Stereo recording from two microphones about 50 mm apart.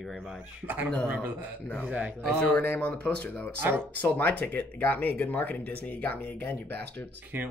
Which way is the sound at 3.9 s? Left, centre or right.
Left.